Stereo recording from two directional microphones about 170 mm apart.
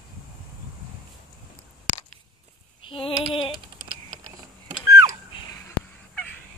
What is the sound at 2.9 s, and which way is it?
Typing, 35° left (ahead or behind).